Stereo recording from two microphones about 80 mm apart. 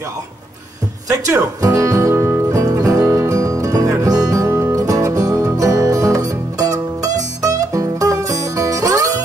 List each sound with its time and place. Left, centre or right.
1.0 s speech: right
2.6 s music: right
4.7 s music: right